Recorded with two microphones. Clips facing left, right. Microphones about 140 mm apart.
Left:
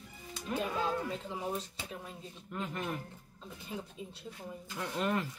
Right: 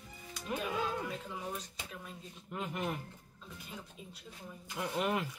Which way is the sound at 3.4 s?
30° left (ahead or behind).